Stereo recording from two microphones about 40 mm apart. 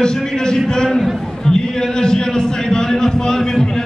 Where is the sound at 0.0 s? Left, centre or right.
Centre.